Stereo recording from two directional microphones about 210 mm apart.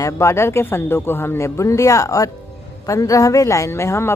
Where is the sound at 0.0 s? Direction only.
15° left (ahead or behind).